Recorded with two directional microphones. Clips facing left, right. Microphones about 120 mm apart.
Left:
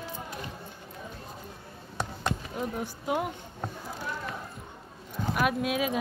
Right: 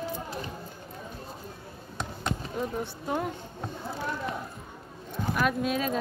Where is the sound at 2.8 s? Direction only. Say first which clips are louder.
Left 1 dB; 10° left (ahead or behind).